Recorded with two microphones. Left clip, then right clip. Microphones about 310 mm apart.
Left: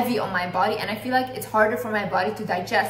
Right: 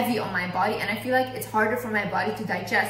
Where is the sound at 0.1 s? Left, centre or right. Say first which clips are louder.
Left 3 dB; centre.